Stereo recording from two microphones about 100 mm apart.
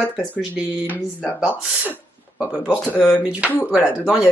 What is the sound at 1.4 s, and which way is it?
Speech, 15° right (ahead or behind).